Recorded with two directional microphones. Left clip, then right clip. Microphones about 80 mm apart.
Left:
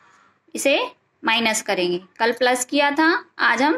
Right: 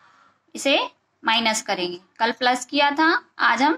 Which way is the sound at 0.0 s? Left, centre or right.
Left.